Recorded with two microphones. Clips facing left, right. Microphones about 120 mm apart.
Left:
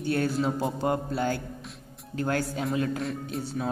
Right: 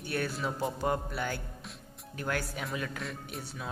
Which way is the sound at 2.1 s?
30° left (ahead or behind).